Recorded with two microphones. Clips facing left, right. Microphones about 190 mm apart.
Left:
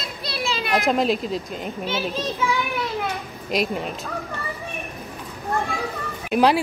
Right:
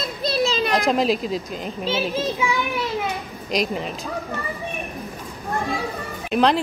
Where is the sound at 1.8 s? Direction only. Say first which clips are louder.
Right 4 dB; 25° right (ahead or behind).